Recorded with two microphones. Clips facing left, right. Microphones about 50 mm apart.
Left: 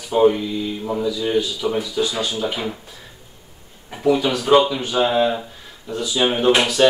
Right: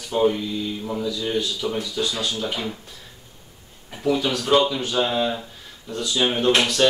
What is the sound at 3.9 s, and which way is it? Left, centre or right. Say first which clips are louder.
Speech: left 4 dB; centre.